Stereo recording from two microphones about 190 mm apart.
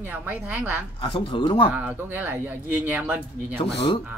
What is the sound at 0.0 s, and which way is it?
Speech, 10° right (ahead or behind).